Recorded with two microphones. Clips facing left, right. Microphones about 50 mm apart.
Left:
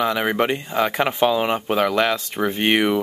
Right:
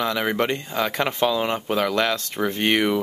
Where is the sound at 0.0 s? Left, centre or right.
Centre.